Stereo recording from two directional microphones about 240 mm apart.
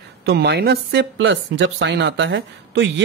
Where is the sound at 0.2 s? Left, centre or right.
Right.